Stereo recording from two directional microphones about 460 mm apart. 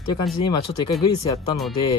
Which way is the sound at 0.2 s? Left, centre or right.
Centre.